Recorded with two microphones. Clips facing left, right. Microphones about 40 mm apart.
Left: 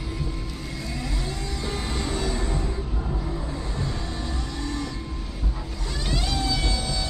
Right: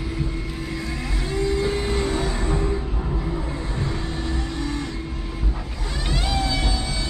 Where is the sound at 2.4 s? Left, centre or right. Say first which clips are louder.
Right 5 dB; right.